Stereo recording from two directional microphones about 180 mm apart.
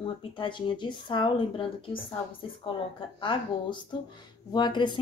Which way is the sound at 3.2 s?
25° left (ahead or behind).